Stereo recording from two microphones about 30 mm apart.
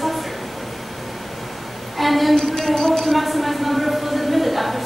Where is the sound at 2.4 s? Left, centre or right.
Centre.